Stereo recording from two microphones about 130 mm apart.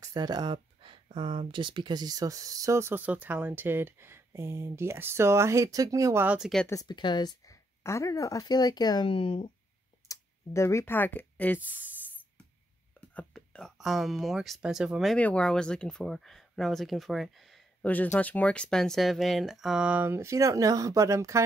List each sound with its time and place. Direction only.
0.0 s speech: 30° right (ahead or behind)
6.2 s speech: 5° right (ahead or behind)
6.7 s speech: 30° left (ahead or behind)
10.0 s speech: 20° left (ahead or behind)
13.1 s speech: 10° left (ahead or behind)
15.1 s speech: 10° left (ahead or behind)
17.8 s speech: 10° left (ahead or behind); by 21.4 s 25° right (ahead or behind)